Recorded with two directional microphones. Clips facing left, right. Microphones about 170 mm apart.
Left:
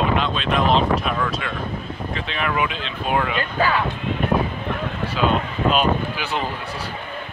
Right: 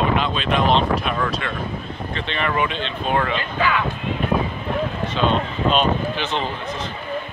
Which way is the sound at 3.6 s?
40° left (ahead or behind).